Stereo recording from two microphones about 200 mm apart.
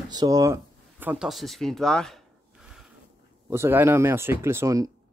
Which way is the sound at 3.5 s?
10° right (ahead or behind).